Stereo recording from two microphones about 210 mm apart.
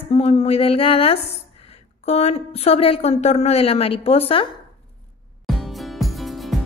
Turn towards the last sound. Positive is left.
turn(degrees=0)  # may be behind; listen again after turning